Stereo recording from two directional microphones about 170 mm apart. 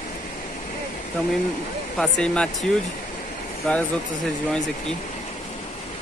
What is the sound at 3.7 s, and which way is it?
Speech, 5° left (ahead or behind).